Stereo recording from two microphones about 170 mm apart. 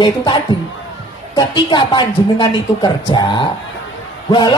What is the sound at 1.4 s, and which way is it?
A man's voice, 30° left (ahead or behind).